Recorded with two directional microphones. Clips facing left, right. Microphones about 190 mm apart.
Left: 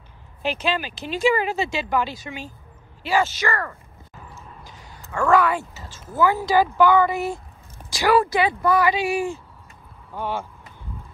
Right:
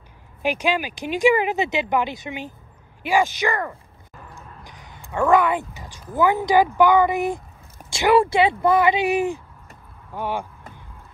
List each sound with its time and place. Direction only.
0.4 s speech: 15° right (ahead or behind)